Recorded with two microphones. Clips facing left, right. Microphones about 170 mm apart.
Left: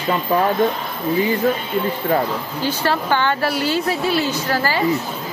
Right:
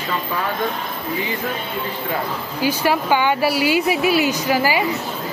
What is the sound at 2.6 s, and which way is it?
Speech, 10° right (ahead or behind).